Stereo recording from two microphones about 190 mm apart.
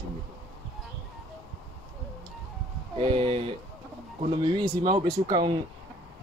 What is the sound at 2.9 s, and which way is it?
Speech, 30° right (ahead or behind).